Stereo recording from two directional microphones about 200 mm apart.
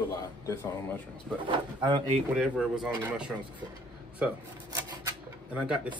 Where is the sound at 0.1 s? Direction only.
15° left (ahead or behind).